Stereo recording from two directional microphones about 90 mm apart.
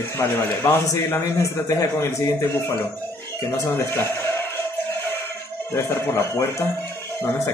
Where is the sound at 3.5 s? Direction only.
30° left (ahead or behind).